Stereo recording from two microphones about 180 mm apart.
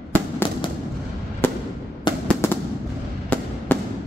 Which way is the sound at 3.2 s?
10° left (ahead or behind).